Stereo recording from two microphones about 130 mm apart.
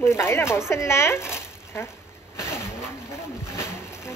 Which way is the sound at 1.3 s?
20° left (ahead or behind).